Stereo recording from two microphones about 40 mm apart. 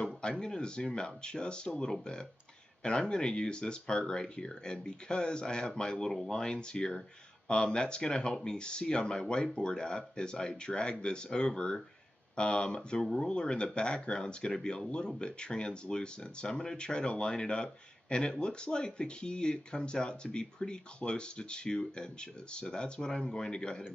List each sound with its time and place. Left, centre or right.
0.0 s speech: centre